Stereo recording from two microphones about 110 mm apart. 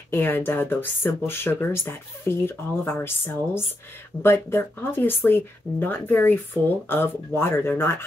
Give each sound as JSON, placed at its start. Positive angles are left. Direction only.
{"t": 0.1, "sound": "speech", "side_deg": 20}